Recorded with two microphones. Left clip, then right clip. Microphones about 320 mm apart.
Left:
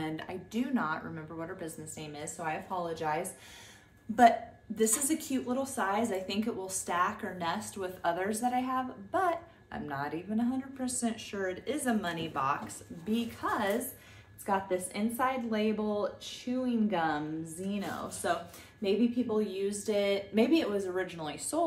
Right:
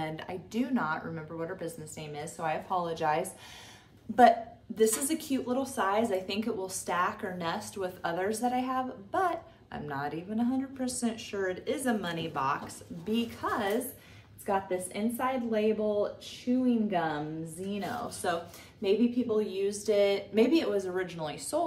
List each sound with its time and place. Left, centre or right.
0.0 s a woman's voice: centre